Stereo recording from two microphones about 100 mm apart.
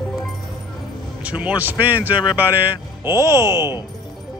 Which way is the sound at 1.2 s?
10° right (ahead or behind).